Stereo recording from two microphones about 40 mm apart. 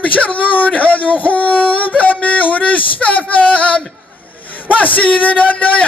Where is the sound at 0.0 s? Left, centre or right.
Left.